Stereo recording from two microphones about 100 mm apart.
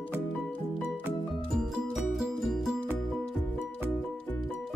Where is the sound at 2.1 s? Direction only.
Centre (ahead or behind).